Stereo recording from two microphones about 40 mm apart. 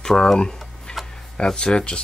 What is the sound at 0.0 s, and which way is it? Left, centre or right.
Speech, centre.